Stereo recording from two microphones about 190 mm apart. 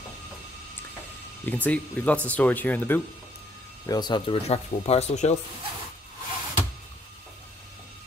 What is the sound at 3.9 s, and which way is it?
Speech, 20° left (ahead or behind).